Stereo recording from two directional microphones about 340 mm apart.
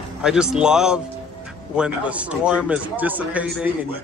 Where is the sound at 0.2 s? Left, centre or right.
Centre.